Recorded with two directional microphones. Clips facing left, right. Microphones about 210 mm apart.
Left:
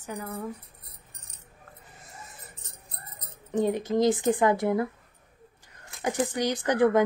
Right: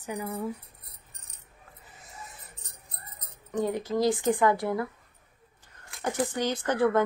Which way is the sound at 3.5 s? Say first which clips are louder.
Left 3 dB; 20° left (ahead or behind).